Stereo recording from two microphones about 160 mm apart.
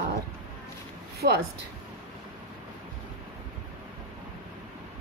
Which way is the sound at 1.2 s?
70° right (ahead or behind).